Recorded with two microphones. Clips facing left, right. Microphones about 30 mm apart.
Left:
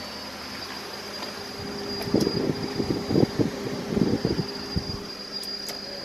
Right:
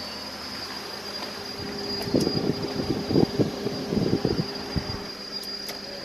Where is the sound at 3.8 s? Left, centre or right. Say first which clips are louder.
Left 2 dB; right.